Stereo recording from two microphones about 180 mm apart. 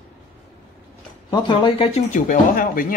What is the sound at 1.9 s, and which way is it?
Speech, 45° left (ahead or behind).